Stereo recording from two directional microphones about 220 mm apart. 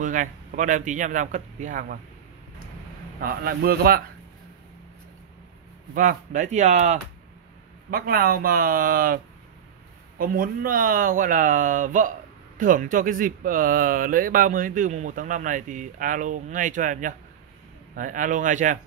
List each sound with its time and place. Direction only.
0.0 s speech: 35° right (ahead or behind)
3.2 s a man's voice: 40° right (ahead or behind)
5.9 s speech: 35° right (ahead or behind)
7.9 s speech: 40° right (ahead or behind)